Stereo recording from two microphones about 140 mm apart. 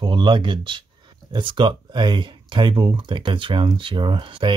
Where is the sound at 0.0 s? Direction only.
35° right (ahead or behind).